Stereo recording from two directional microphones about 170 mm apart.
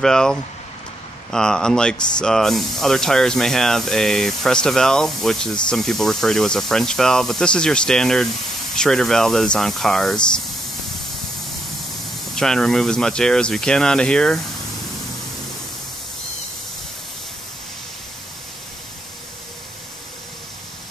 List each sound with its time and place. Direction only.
0.0 s speech: 5° left (ahead or behind)
12.4 s speech: 5° left (ahead or behind)